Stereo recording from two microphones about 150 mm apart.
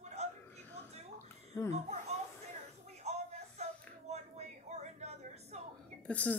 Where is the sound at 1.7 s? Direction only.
45° right (ahead or behind).